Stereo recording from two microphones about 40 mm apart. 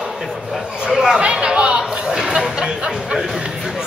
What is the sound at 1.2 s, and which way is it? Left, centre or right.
Chatter, right.